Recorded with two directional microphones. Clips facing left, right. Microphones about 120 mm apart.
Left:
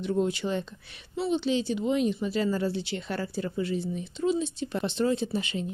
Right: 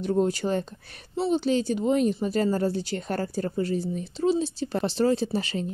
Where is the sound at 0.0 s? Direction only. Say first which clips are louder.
Right 3 dB; 40° right (ahead or behind).